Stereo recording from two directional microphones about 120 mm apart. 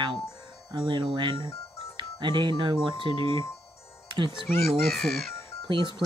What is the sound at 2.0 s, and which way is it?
Speech, 40° right (ahead or behind).